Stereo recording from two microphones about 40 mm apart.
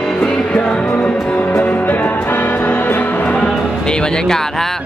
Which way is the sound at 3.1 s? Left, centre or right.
Left.